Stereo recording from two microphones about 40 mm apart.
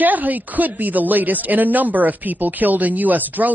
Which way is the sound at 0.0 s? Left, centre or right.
Right.